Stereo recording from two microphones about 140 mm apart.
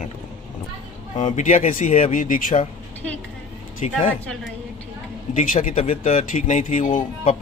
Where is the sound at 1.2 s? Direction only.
65° left (ahead or behind).